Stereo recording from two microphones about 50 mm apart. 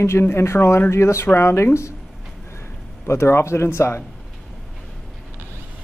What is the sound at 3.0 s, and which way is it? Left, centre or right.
Speech, left.